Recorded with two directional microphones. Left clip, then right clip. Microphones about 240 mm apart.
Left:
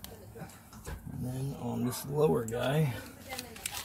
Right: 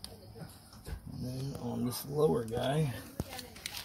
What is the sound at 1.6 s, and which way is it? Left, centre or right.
Speech, centre.